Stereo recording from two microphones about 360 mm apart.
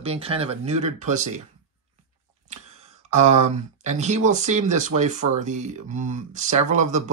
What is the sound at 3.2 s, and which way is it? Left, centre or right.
Speech, centre.